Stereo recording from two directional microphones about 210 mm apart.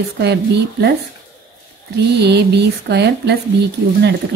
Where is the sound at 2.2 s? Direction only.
55° right (ahead or behind).